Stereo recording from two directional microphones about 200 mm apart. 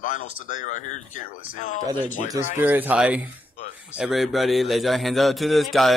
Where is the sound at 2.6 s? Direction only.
10° right (ahead or behind).